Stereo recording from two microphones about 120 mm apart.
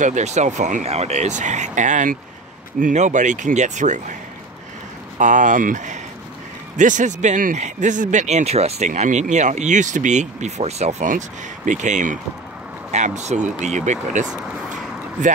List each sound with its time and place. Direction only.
0.0 s speech: 80° right
5.2 s speech: 90° right
12.9 s speech: 75° right (ahead or behind)